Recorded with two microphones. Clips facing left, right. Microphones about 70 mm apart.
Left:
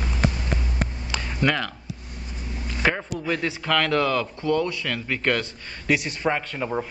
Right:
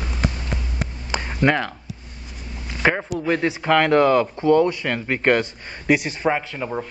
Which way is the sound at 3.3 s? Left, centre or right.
Right.